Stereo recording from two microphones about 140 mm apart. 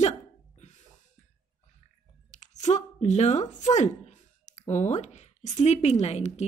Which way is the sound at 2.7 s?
55° left (ahead or behind).